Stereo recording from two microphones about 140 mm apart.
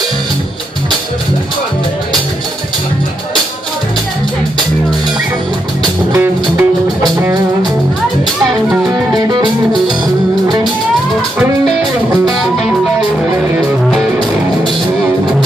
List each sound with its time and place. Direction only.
6.1 s music: 15° right (ahead or behind)